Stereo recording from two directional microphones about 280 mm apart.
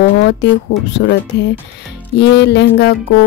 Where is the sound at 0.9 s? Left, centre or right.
Left.